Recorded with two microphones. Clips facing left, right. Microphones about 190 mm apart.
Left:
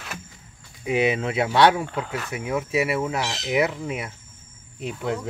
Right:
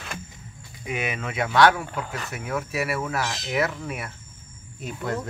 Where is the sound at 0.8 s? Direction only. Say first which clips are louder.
Left 8 dB; 30° left (ahead or behind).